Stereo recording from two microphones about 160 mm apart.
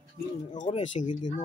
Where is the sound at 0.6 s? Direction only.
45° left (ahead or behind).